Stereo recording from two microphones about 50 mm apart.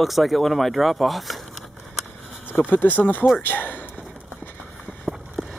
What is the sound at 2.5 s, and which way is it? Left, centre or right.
Speech, left.